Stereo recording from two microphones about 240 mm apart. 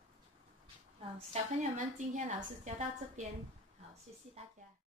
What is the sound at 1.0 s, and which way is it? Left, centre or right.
A woman's voice, right.